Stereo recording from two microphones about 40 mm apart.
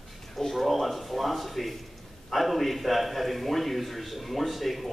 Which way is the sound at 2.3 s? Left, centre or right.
Centre.